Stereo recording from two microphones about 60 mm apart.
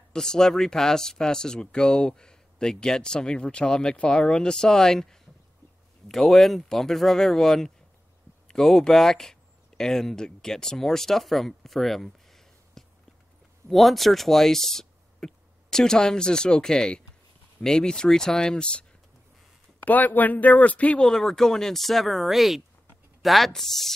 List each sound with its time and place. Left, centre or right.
0.1 s speech: centre
19.8 s speech: left
21.1 s speech: centre